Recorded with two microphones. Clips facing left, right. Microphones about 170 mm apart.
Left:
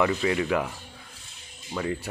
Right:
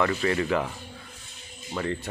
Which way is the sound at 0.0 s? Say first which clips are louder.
Left 1 dB; 10° left (ahead or behind).